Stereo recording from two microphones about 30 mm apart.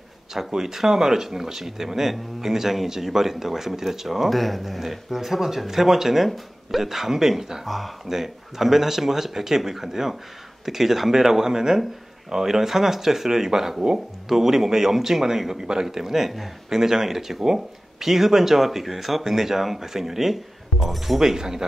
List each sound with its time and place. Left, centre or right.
0.5 s speech: centre
4.3 s speech: centre
7.6 s speech: centre
8.1 s speech: centre
21.2 s speech: centre